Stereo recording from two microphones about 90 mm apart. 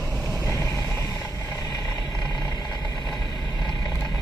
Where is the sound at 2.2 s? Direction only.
50° left (ahead or behind).